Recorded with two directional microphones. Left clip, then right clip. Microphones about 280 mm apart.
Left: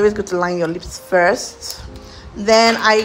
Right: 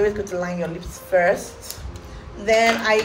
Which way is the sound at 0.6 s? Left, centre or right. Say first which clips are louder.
Left 7 dB; left.